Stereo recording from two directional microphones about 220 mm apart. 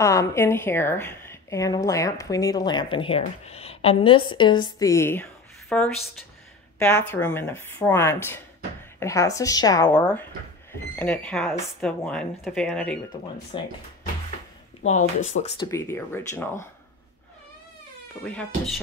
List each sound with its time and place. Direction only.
0.0 s a woman's voice: 15° left (ahead or behind)
13.5 s speech: 20° left (ahead or behind)
14.8 s speech: 30° left (ahead or behind)
15.5 s a woman's voice: 15° left (ahead or behind)